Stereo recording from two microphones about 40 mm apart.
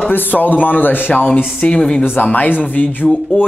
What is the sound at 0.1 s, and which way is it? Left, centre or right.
A man's voice, left.